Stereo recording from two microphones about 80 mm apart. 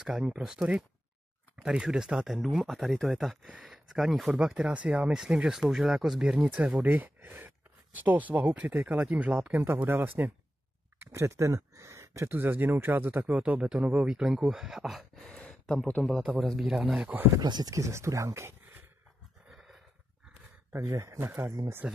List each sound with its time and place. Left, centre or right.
0.0 s speech: centre
6.3 s speech: centre
11.1 s speech: right
13.3 s speech: centre
15.2 s a sound: centre
16.0 s speech: centre
16.6 s speech: centre
17.4 s speech: right
17.7 s speech: right
20.7 s speech: right